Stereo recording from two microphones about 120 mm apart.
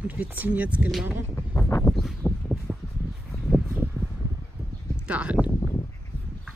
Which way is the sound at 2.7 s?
15° right (ahead or behind).